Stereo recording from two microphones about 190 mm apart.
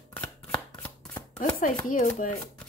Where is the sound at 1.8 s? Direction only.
45° left (ahead or behind).